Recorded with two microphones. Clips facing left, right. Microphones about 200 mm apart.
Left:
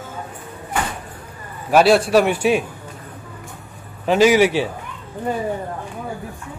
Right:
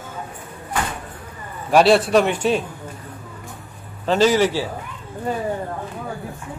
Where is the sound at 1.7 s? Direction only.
Centre (ahead or behind).